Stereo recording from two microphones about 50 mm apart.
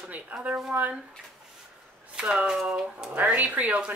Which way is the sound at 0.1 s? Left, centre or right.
Right.